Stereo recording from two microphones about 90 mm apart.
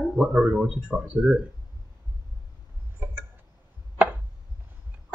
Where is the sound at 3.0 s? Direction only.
20° right (ahead or behind).